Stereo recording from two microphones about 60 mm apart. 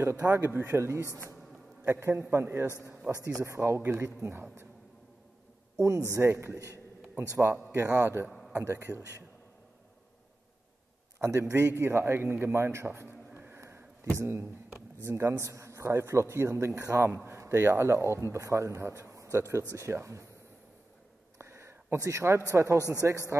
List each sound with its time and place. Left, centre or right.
0.3 s a man's voice: right
3.3 s a man's voice: right
5.8 s a man's voice: right
7.7 s a man's voice: right
8.3 s a sound: centre
8.5 s a man's voice: right
11.1 s a man's voice: right
13.6 s a sound: right
14.1 s a man's voice: right
17.1 s a man's voice: right
17.4 s a man's voice: right
18.4 s speech: right
21.4 s a sound: right
22.5 s a man's voice: right